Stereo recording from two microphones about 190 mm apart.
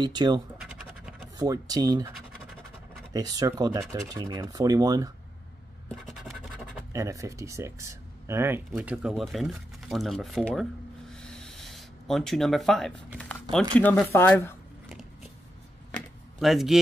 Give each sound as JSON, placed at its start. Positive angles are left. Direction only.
{"t": 0.0, "sound": "speech", "side_deg": -20}
{"t": 0.6, "sound": "scratch", "side_deg": -5}
{"t": 1.4, "sound": "speech", "side_deg": -20}
{"t": 3.1, "sound": "speech", "side_deg": -20}
{"t": 6.0, "sound": "scratch", "side_deg": 0}
{"t": 6.9, "sound": "speech", "side_deg": -15}
{"t": 13.2, "sound": "typing", "side_deg": 5}
{"t": 13.7, "sound": "speech", "side_deg": 10}
{"t": 16.3, "sound": "speech", "side_deg": 0}